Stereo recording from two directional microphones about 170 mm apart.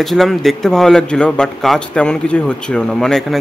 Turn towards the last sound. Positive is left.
turn(degrees=5)  # may be behind; listen again after turning